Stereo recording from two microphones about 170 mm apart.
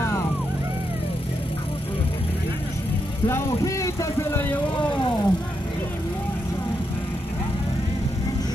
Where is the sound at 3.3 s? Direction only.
15° left (ahead or behind).